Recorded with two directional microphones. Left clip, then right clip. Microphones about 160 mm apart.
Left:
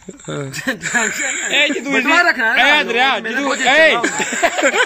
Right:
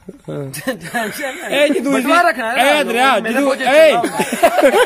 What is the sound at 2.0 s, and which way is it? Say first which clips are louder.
Speech: left 1 dB; 40° right (ahead or behind).